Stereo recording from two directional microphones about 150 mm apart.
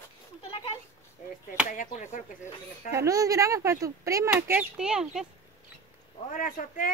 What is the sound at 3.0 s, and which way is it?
Speech, 20° right (ahead or behind).